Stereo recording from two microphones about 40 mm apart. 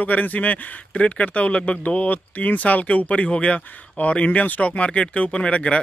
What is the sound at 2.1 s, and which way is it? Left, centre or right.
Speech, left.